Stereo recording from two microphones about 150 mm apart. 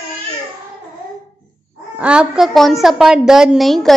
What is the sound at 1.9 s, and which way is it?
A woman's voice, 10° right (ahead or behind).